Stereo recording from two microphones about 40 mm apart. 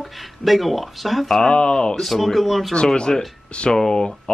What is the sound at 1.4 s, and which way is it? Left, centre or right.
Speech, left.